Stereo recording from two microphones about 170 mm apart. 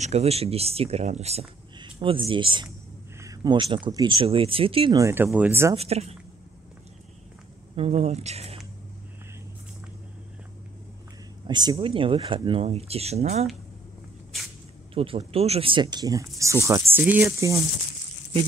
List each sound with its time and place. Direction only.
0.0 s speech: 40° right (ahead or behind)
4.9 s speech: 15° right (ahead or behind)
5.8 s speech: 35° right (ahead or behind)
7.7 s speech: 35° right (ahead or behind)
11.4 s speech: 25° right (ahead or behind)
15.0 s speech: 35° right (ahead or behind); by 17.3 s 10° right (ahead or behind)